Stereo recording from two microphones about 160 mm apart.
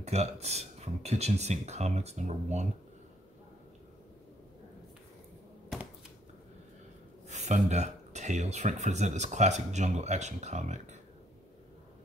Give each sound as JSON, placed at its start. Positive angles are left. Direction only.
{"t": 0.0, "sound": "speech", "side_deg": -45}
{"t": 7.2, "sound": "speech", "side_deg": -45}